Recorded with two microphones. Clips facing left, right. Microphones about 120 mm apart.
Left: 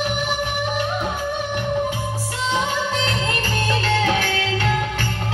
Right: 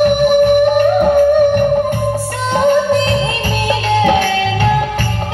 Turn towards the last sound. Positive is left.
turn(degrees=-20)  # may be behind; listen again after turning